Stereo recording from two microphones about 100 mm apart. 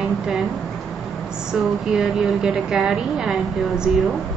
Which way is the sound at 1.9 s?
5° right (ahead or behind).